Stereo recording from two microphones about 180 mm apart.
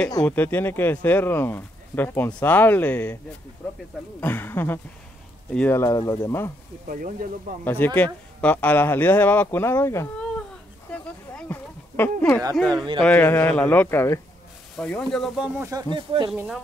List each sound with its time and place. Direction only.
0.2 s speech: 10° left (ahead or behind)
4.2 s speech: 10° left (ahead or behind)
6.9 s speech: 50° right (ahead or behind)
7.6 s speech: 10° left (ahead or behind)
10.9 s a sound: 10° left (ahead or behind)
12.6 s speech: 25° right (ahead or behind)
13.0 s speech: 10° left (ahead or behind); by 15.8 s 15° right (ahead or behind)
15.9 s speech: 25° right (ahead or behind)
16.3 s speech: centre (ahead or behind)